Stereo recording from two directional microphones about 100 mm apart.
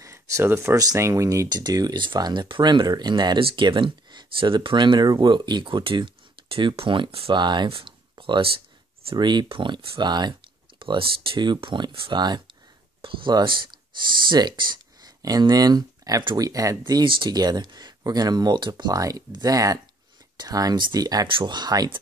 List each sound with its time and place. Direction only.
0.0 s speech: 30° right (ahead or behind)
1.5 s speech: 45° right (ahead or behind); by 7.3 s 65° right (ahead or behind)
7.3 s speech: 50° right (ahead or behind)
10.8 s speech: 55° right (ahead or behind)
15.0 s speech: 40° right (ahead or behind)
21.3 s speech: 50° right (ahead or behind)